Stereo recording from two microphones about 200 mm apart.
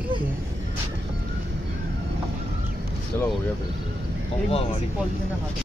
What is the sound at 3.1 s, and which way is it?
Speech, 10° left (ahead or behind).